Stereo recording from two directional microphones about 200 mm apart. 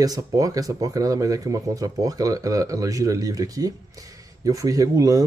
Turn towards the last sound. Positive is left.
turn(degrees=-15)  # may be behind; listen again after turning